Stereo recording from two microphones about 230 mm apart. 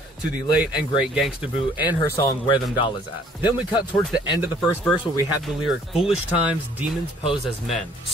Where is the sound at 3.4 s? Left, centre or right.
Centre.